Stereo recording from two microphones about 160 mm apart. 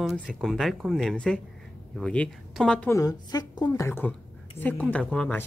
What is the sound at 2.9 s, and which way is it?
A woman's voice, 20° left (ahead or behind).